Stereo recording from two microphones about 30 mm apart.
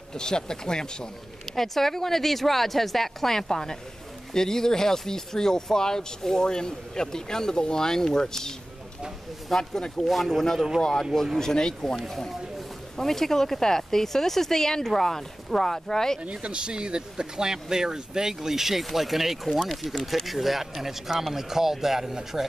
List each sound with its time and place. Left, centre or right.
0.1 s speech: left
1.5 s speech: centre
9.6 s speech: left
12.9 s speech: centre
16.2 s speech: right; by 22.5 s centre